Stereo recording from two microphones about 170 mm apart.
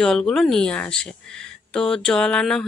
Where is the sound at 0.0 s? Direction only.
5° left (ahead or behind).